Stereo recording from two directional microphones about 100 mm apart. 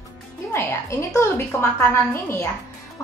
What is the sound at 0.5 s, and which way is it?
A woman's voice, 30° left (ahead or behind).